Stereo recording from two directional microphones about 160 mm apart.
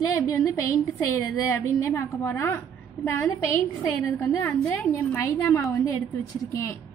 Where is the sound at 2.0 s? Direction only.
15° left (ahead or behind).